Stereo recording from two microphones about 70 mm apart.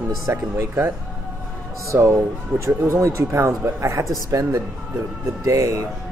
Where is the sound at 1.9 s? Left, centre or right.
Right.